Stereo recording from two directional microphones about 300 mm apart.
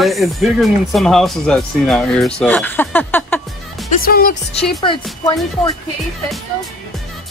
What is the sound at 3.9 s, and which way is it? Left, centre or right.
Speech, left.